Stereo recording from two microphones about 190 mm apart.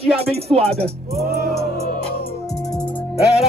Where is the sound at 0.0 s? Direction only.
30° right (ahead or behind).